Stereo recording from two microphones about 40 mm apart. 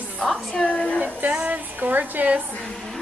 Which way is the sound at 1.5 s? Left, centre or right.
Right.